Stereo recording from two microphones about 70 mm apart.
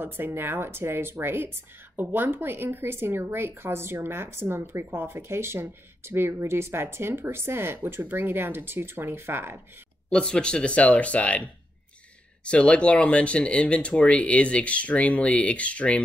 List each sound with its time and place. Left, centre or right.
0.0 s a woman's voice: right
10.0 s speech: centre
12.4 s speech: centre